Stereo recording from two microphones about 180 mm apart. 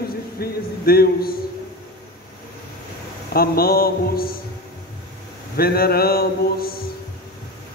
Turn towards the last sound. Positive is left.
turn(degrees=55)  # may be behind; listen again after turning